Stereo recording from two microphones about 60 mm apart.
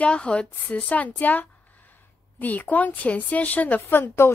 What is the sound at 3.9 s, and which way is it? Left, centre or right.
Speech, left.